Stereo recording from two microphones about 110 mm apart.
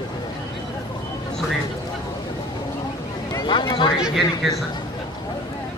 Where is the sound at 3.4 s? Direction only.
45° left (ahead or behind).